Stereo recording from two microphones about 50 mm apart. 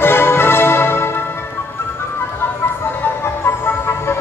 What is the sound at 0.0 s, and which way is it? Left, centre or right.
Music, left.